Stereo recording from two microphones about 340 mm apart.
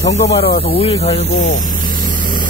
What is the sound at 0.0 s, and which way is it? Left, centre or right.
Speech, left.